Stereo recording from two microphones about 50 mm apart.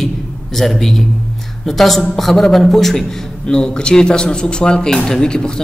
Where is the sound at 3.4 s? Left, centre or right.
Centre.